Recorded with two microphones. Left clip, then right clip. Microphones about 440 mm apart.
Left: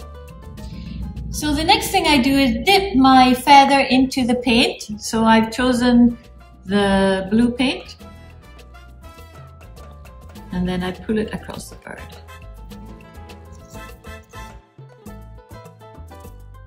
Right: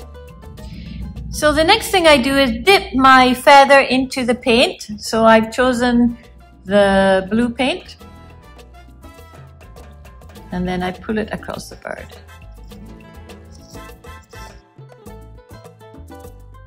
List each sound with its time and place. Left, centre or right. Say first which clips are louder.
0.2 s music: right 1 dB; right
0.7 s music: left 1 dB; centre
1.3 s a woman's voice: right 4 dB; centre
10.5 s a woman's voice: right 3 dB; centre
12.6 s music: right 4 dB; right